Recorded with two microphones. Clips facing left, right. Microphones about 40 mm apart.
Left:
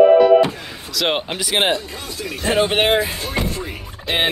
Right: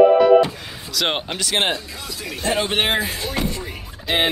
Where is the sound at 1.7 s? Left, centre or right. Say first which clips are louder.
Left 3 dB; left.